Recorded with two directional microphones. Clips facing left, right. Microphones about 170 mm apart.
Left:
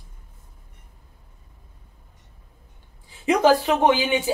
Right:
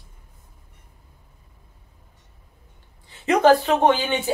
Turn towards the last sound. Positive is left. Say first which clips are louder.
# even
turn(degrees=10)  # may be behind; listen again after turning